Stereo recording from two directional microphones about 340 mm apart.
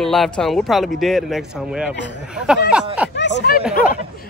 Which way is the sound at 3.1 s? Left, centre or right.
Left.